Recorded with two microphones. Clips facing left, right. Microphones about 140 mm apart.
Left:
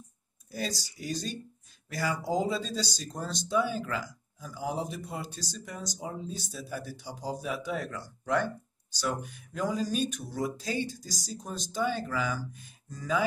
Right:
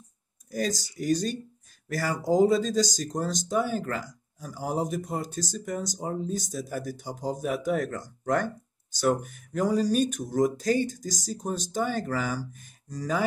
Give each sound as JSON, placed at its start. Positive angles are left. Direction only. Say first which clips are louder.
{"t": 0.5, "sound": "speech", "louder": "right 6 dB", "side_deg": -45}